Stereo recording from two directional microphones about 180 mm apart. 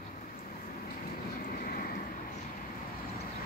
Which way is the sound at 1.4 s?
55° left (ahead or behind).